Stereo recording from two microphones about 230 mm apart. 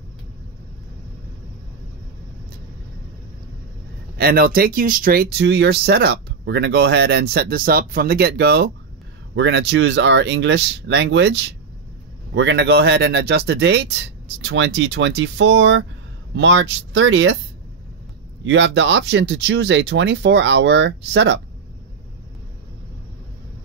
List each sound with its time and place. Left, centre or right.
4.2 s speech: right
12.4 s speech: right
18.4 s speech: right